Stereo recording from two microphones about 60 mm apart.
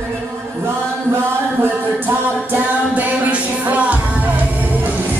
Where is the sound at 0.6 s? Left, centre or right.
Right.